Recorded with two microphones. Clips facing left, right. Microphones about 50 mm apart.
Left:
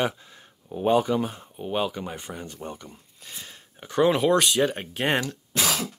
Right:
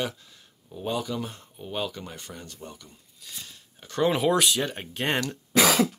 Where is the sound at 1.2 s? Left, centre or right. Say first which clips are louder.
Left 6 dB; centre.